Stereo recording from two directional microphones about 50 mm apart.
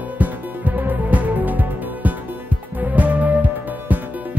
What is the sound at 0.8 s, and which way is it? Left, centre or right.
Music, right.